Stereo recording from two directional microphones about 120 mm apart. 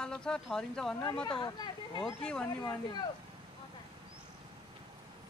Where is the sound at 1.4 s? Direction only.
35° left (ahead or behind).